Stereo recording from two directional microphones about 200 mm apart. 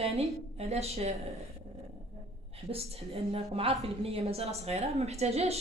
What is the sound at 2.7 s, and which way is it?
A woman's voice, 30° right (ahead or behind).